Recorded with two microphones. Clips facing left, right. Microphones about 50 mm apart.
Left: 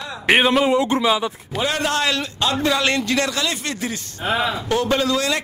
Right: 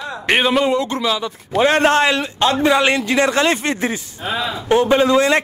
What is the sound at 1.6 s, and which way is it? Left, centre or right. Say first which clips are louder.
A man's voice: right 7 dB; right.